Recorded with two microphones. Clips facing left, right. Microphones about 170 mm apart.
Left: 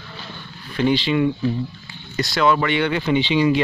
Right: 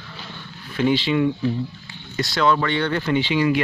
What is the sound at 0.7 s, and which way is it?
Speech, centre (ahead or behind).